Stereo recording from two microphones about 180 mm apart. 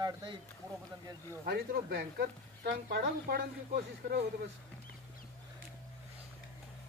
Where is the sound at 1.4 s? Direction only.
60° right (ahead or behind).